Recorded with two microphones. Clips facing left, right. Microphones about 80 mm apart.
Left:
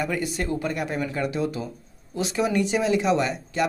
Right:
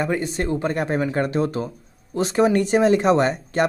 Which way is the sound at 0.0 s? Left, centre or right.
Right.